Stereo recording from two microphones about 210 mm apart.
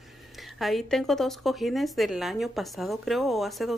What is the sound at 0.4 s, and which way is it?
Speech, centre (ahead or behind).